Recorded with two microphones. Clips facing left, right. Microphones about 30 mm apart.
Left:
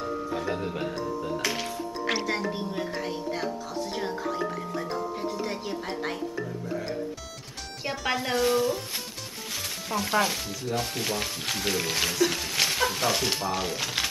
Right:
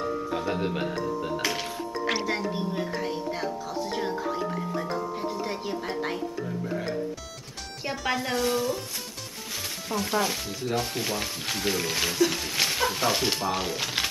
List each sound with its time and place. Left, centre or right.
0.6 s speech: right
2.0 s speech: centre
4.7 s speech: centre
7.8 s speech: centre
9.8 s speech: centre
10.6 s speech: centre
11.0 s speech: centre